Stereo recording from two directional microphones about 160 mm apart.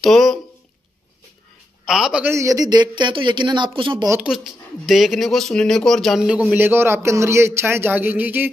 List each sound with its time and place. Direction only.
0.0 s a sound: centre (ahead or behind)
1.9 s a man's voice: centre (ahead or behind)
2.2 s speech: 20° right (ahead or behind)
4.8 s speech: centre (ahead or behind)